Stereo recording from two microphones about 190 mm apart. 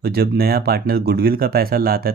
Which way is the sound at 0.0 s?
55° right (ahead or behind).